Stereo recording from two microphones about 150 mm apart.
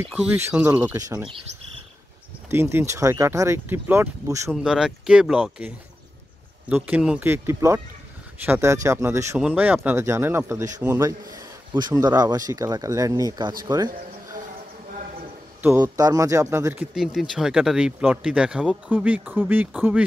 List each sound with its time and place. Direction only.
0.1 s speech: 5° right (ahead or behind)
0.9 s speech: 20° right (ahead or behind)
2.5 s speech: 15° right (ahead or behind)
4.5 s speech: 5° right (ahead or behind)
6.7 s speech: 10° right (ahead or behind)
12.0 s speech: 25° right (ahead or behind)
15.8 s speech: 25° right (ahead or behind)
16.9 s speech: 5° right (ahead or behind)